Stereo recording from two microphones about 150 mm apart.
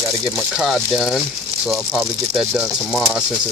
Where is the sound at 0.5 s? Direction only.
Centre (ahead or behind).